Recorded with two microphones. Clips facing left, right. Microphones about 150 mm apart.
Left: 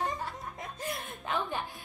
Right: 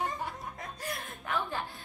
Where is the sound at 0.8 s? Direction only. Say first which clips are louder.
Left 1 dB; 20° left (ahead or behind).